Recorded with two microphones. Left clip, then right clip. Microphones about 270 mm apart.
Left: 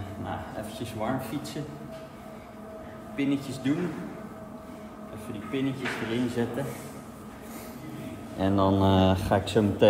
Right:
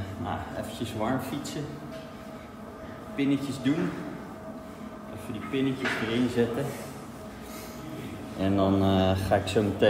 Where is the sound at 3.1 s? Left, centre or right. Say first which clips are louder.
Right 1 dB; centre.